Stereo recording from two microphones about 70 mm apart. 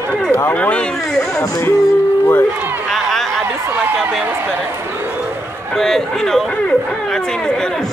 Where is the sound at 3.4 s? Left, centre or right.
Right.